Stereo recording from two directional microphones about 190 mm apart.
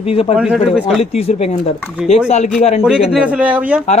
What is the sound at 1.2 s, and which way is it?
Speech, 35° left (ahead or behind).